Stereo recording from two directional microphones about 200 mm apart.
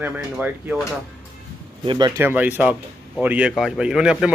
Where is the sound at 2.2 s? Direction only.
10° right (ahead or behind).